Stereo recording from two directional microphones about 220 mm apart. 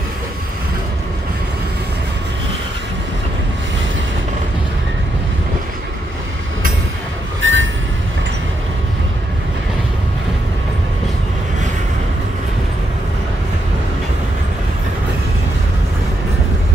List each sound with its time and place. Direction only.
7.4 s train: 60° right (ahead or behind)